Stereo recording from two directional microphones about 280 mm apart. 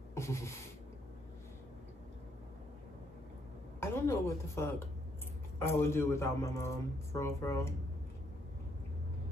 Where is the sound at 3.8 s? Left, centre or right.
Centre.